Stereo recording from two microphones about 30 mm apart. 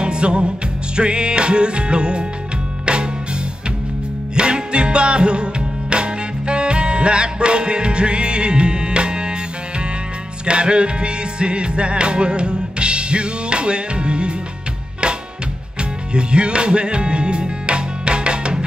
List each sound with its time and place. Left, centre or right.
0.0 s music: right
4.4 s music: right
10.4 s music: right
16.1 s music: right